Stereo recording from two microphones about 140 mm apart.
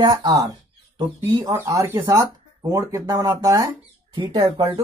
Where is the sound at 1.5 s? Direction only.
20° right (ahead or behind).